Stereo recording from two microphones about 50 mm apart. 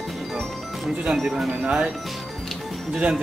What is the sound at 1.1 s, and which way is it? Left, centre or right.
Speech, centre.